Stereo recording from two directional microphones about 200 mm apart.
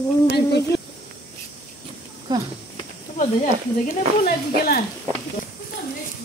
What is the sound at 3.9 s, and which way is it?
Speech, 45° left (ahead or behind).